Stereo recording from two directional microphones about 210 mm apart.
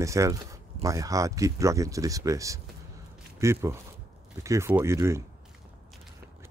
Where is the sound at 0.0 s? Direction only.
15° right (ahead or behind).